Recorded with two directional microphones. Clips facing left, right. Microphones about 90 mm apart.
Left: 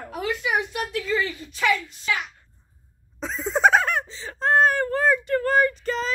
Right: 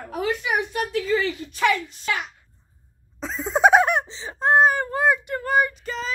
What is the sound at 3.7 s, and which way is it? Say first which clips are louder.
Speech: right 4 dB; 20° right (ahead or behind).